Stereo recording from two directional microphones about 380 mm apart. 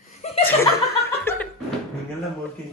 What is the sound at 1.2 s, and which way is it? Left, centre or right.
Laughter, centre.